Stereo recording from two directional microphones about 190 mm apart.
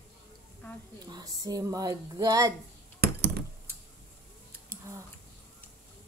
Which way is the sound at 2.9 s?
60° right (ahead or behind).